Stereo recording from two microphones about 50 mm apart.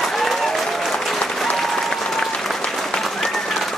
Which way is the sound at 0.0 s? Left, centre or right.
Centre.